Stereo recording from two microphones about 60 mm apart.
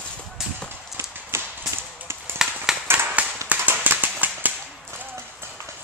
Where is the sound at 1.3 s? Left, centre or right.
Right.